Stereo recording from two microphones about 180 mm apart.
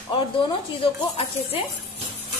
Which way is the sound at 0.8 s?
30° left (ahead or behind).